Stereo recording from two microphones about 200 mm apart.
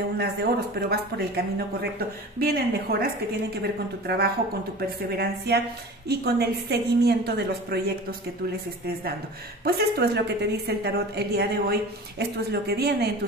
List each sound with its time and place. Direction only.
0.2 s a woman's voice: 55° right (ahead or behind)
9.7 s a woman's voice: 55° right (ahead or behind)